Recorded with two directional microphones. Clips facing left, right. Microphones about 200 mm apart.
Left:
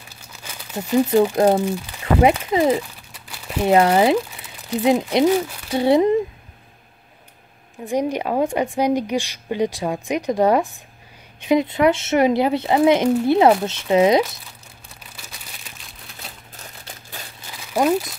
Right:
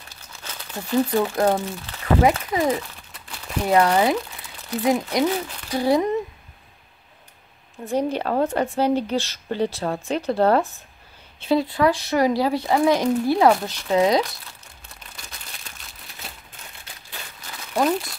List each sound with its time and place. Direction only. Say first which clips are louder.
0.4 s speech: left 4 dB; 10° left (ahead or behind)
3.1 s crumpling: left 2 dB; 10° left (ahead or behind)
3.6 s speech: left 3 dB; 25° left (ahead or behind)
4.6 s a woman's voice: left 3 dB; 15° left (ahead or behind)
5.7 s speech: left 4 dB; 25° left (ahead or behind)
7.8 s a woman's voice: left 1 dB; 15° left (ahead or behind)
15.1 s crumpling: left 1 dB; 5° left (ahead or behind)
16.5 s crumpling: left 4 dB; 40° left (ahead or behind)
17.5 s crumpling: left 3 dB; 10° left (ahead or behind)